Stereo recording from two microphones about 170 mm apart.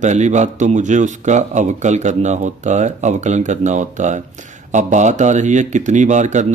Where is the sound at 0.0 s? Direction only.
45° right (ahead or behind).